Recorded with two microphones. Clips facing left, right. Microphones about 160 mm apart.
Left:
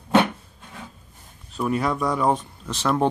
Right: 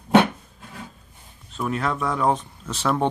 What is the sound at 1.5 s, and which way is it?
Speech, 5° left (ahead or behind).